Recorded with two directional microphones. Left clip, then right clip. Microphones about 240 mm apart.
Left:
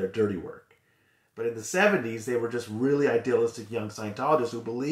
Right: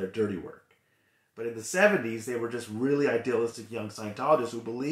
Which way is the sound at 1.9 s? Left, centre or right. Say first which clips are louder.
Left 1 dB; centre.